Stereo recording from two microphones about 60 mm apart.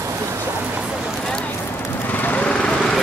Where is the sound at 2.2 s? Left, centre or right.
Left.